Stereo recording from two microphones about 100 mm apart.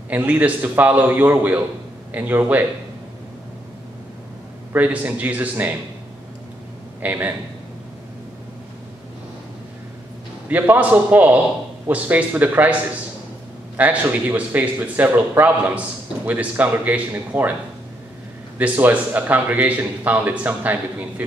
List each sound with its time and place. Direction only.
0.1 s a man's voice: 15° right (ahead or behind)
4.7 s a man's voice: 15° right (ahead or behind)
7.0 s a man's voice: 15° right (ahead or behind)
10.5 s a man's voice: 15° right (ahead or behind)
13.7 s a man's voice: 15° right (ahead or behind)
18.6 s a man's voice: 15° right (ahead or behind)